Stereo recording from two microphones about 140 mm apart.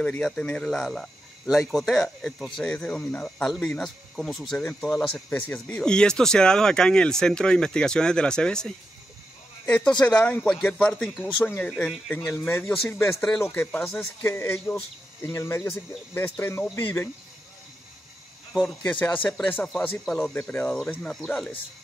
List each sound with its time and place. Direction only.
0.0 s speech: 10° left (ahead or behind)
11.7 s speech: 5° right (ahead or behind)
12.1 s speech: 20° left (ahead or behind)
13.8 s speech: 15° left (ahead or behind)
18.9 s speech: 10° left (ahead or behind)